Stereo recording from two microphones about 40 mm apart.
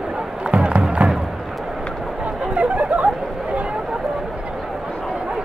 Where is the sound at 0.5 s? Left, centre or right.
Right.